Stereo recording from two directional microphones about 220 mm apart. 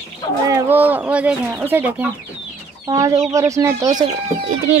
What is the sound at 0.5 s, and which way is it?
Speech, 10° right (ahead or behind).